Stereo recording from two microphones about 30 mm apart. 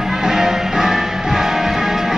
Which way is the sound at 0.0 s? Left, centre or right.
Centre.